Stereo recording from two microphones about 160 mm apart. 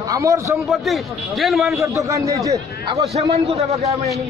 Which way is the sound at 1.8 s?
20° right (ahead or behind).